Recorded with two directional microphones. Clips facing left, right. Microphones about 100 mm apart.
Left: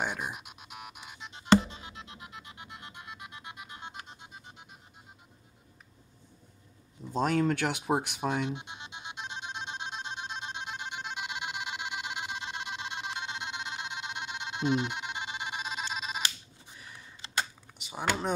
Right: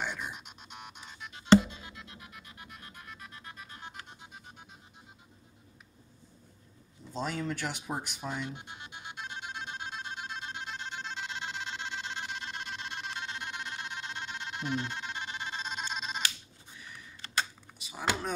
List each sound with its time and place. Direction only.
0.0 s music: 45° left (ahead or behind)
0.3 s music: 5° left (ahead or behind)
1.2 s music: 25° left (ahead or behind)
7.2 s speech: 55° left (ahead or behind)
8.5 s music: 20° left (ahead or behind)
15.7 s telephone: 5° left (ahead or behind)
17.2 s typing: 20° left (ahead or behind)